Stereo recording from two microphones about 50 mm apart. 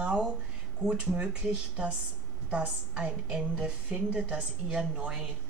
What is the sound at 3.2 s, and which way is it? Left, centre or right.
Speech, centre.